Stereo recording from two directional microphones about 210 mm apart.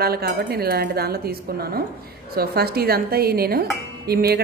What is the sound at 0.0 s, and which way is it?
Speech, 45° right (ahead or behind).